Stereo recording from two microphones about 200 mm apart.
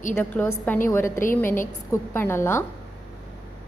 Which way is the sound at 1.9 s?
10° left (ahead or behind).